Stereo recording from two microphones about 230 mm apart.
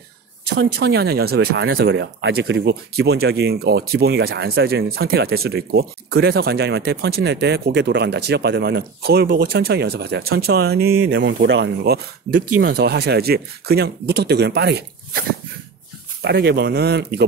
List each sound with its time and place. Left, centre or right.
0.5 s speech: right